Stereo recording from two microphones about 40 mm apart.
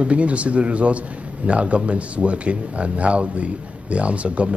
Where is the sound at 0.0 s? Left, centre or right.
Right.